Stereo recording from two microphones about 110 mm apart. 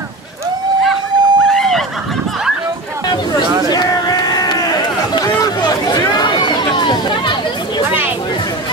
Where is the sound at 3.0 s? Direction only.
40° left (ahead or behind).